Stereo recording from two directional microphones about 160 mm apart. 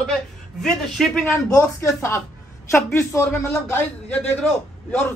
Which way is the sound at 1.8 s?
15° left (ahead or behind).